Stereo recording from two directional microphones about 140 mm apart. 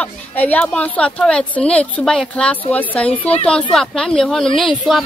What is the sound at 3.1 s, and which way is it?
Speech, 45° left (ahead or behind).